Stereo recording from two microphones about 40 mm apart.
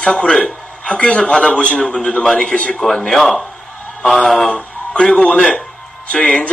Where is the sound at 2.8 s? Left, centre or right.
Centre.